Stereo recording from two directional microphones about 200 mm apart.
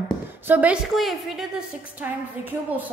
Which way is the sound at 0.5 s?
5° right (ahead or behind).